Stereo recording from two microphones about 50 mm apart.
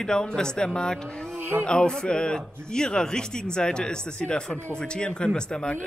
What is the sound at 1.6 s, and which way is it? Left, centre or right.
Speech, centre.